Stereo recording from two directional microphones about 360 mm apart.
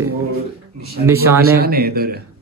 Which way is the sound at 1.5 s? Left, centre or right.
Right.